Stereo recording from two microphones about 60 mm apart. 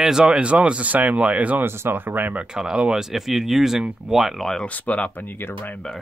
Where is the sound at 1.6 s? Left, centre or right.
Right.